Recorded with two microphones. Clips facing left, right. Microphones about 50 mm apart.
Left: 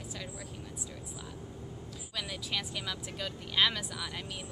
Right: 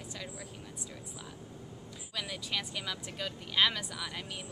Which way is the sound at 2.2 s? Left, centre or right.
Centre.